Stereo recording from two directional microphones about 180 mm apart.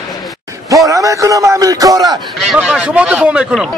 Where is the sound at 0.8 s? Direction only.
20° right (ahead or behind).